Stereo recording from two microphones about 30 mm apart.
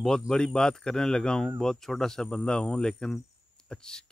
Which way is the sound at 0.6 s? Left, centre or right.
Left.